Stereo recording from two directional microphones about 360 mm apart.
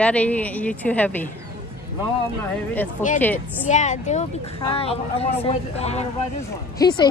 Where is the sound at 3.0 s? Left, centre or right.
Centre.